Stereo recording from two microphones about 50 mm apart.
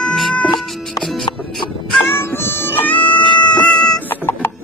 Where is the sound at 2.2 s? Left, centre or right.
Left.